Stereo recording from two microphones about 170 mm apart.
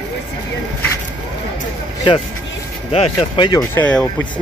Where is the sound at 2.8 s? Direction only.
30° left (ahead or behind).